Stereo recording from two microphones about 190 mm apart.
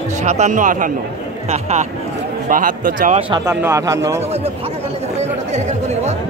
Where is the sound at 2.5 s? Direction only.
45° right (ahead or behind).